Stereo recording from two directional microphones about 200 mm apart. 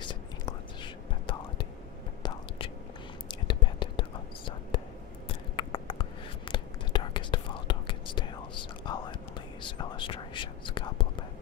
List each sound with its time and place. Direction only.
0.0 s whispering: 25° left (ahead or behind)
5.6 s whispering: 25° left (ahead or behind)